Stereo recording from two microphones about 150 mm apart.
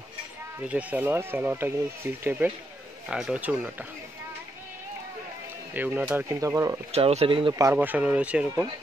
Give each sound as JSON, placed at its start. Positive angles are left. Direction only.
{"t": 0.6, "sound": "speech", "side_deg": -10}
{"t": 5.8, "sound": "speech", "side_deg": -15}
{"t": 6.9, "sound": "speech", "side_deg": -45}
{"t": 7.5, "sound": "speech", "side_deg": -15}